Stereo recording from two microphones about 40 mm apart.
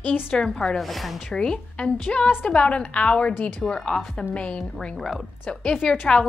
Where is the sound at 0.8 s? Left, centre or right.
Centre.